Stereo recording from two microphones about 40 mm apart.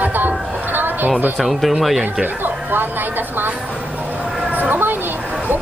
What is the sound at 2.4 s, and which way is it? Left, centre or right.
A woman's voice, right.